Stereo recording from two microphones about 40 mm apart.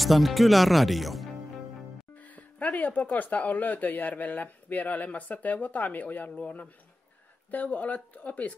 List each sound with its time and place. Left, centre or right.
0.0 s speech: centre
2.1 s music: left
2.8 s speech: left